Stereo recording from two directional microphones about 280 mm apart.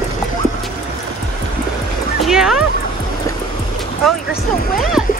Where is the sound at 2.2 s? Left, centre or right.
Centre.